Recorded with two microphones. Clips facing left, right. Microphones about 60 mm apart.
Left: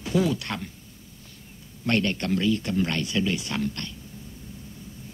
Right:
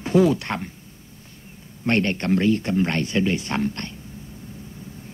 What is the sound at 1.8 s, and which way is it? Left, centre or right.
Speech, right.